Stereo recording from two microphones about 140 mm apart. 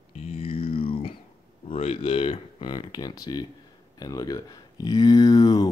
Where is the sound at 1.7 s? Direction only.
45° left (ahead or behind).